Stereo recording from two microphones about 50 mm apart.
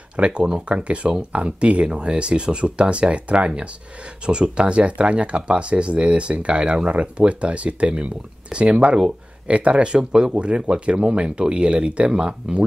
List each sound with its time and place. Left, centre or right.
0.1 s speech: right